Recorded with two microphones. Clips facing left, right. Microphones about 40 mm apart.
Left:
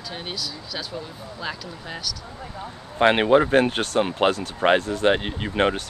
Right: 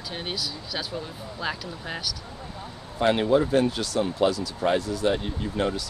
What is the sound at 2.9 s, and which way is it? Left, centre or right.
Speech, left.